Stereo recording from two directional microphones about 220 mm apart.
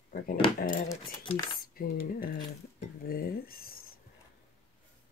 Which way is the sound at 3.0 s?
40° left (ahead or behind).